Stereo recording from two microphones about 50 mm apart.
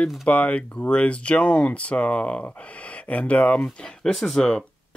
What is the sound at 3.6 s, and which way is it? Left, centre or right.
Speech, centre.